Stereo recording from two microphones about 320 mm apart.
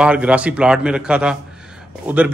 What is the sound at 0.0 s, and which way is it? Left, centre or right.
A man's voice, centre.